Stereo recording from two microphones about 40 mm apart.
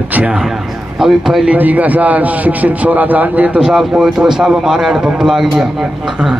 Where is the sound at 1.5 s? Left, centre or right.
Right.